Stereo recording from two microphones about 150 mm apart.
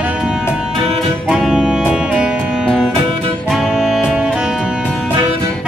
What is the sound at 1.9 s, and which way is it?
Music, 5° right (ahead or behind).